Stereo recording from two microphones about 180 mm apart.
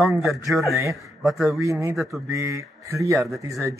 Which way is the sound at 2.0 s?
Centre (ahead or behind).